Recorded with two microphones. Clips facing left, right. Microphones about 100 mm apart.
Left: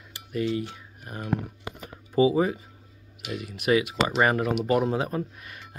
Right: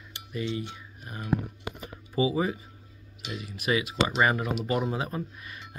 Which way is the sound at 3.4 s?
65° left (ahead or behind).